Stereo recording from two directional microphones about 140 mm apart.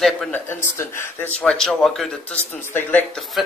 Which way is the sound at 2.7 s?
10° left (ahead or behind).